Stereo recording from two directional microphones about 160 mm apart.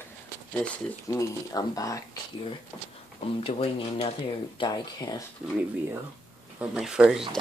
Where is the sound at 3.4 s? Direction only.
35° left (ahead or behind).